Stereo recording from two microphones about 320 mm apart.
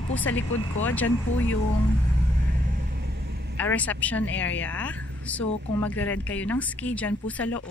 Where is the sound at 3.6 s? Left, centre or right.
Centre.